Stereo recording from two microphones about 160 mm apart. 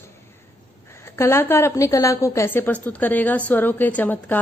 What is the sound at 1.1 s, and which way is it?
A woman's voice, 15° left (ahead or behind).